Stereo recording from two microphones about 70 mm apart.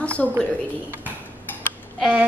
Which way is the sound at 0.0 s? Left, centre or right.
Centre.